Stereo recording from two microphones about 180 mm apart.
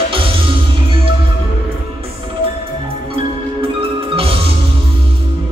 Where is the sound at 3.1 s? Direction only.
30° right (ahead or behind).